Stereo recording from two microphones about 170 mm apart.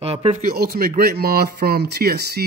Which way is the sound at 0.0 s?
35° right (ahead or behind).